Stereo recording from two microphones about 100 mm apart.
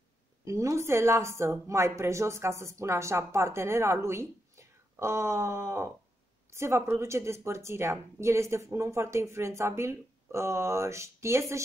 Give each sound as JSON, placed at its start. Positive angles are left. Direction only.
{"t": 0.5, "sound": "a woman's voice", "side_deg": -30}